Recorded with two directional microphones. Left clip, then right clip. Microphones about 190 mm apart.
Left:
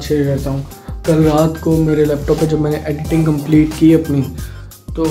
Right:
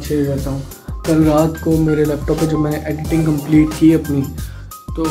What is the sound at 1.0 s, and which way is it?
Speech, centre (ahead or behind).